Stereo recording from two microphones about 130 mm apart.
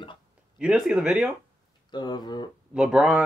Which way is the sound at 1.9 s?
35° left (ahead or behind).